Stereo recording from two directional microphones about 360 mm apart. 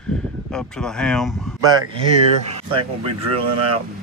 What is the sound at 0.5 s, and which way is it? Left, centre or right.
Speech, centre.